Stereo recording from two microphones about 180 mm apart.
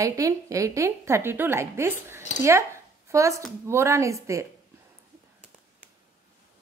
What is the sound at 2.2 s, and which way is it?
Speech, 40° left (ahead or behind).